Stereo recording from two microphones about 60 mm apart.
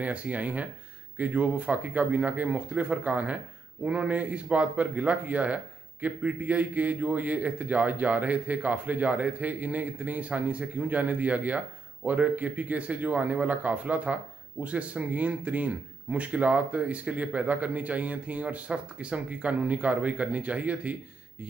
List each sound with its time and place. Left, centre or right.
0.0 s speech: right